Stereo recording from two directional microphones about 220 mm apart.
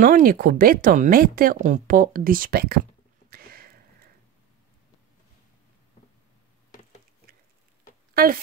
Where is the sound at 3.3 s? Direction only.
45° right (ahead or behind).